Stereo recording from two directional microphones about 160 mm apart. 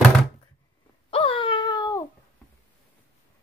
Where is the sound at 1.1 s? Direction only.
35° left (ahead or behind).